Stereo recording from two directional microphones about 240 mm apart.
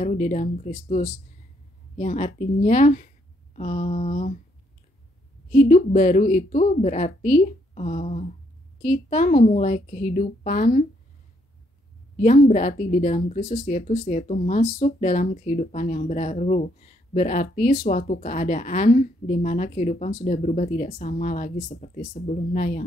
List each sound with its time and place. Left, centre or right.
0.0 s speech: left
5.5 s a woman's voice: left
12.2 s speech: left